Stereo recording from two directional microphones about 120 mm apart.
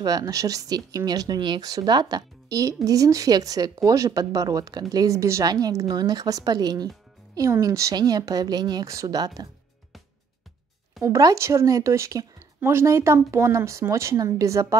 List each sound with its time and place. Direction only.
0.0 s speech: 30° right (ahead or behind)
11.0 s speech: 30° right (ahead or behind)